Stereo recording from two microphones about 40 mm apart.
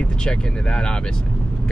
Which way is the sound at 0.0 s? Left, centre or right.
Left.